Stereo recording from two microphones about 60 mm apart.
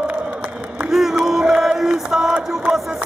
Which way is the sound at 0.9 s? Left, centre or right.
Centre.